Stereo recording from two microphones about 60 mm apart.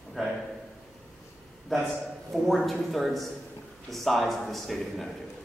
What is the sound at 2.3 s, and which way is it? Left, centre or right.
Speech, centre.